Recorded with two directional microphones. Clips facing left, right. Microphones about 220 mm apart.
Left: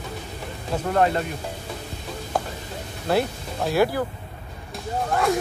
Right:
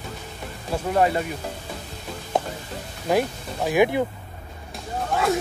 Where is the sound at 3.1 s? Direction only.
10° right (ahead or behind).